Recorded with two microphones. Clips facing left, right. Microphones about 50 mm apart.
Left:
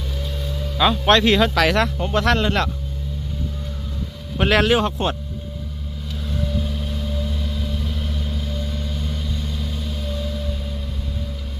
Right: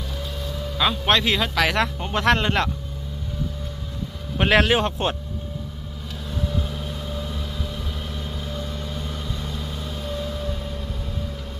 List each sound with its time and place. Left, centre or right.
0.5 s speech: centre
2.1 s speech: right
4.4 s a man's voice: centre
4.7 s speech: right
6.3 s vehicle: centre; by 10.5 s right